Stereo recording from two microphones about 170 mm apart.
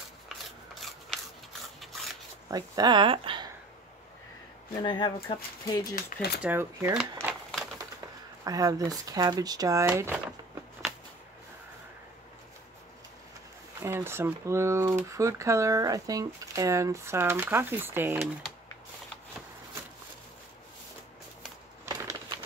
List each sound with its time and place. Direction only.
0.7 s filing: centre (ahead or behind)
1.8 s a sound: centre (ahead or behind)
2.5 s speech: 25° right (ahead or behind)
4.8 s speech: 25° left (ahead or behind)
6.4 s speech: 15° right (ahead or behind)
7.2 s typewriter: 15° right (ahead or behind)
8.0 s speech: 20° right (ahead or behind)
13.8 s speech: 15° right (ahead or behind)
21.8 s bird: 20° right (ahead or behind)